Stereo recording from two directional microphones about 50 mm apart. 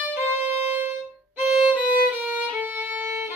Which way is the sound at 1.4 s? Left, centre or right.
Right.